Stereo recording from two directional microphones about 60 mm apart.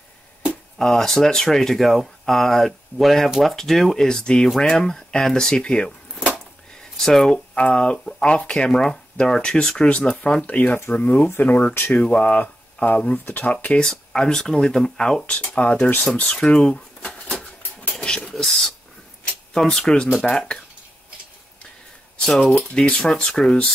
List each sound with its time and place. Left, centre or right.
0.7 s speech: centre
3.5 s speech: centre
7.5 s speech: centre
13.8 s speech: centre
18.0 s a sound: centre
18.3 s speech: centre
19.2 s a sound: centre
20.2 s speech: centre
22.2 s speech: centre